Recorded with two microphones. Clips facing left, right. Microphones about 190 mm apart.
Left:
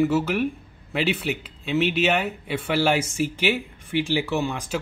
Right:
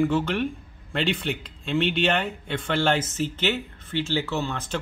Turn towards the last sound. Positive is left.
turn(degrees=10)  # may be behind; listen again after turning